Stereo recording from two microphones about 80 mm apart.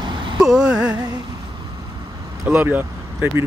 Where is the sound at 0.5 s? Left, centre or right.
Centre.